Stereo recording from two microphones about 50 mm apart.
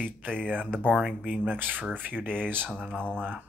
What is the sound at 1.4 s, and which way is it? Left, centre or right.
Speech, right.